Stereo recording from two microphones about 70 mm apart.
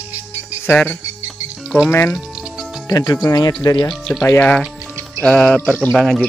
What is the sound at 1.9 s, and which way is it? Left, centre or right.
Speech, left.